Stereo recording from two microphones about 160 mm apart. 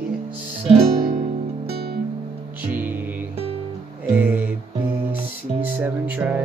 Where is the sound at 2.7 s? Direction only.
10° right (ahead or behind).